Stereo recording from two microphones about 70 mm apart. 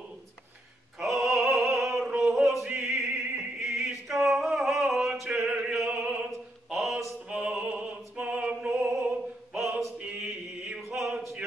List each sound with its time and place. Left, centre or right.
0.9 s opera: centre
9.9 s music: centre
11.0 s a sound: centre